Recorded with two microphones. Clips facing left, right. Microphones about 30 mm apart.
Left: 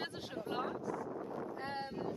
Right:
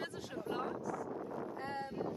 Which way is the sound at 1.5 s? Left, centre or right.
Left.